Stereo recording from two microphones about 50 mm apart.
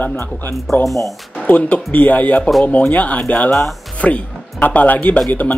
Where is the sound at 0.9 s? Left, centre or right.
Centre.